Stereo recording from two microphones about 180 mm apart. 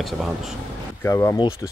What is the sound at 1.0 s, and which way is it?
Speech, 15° left (ahead or behind).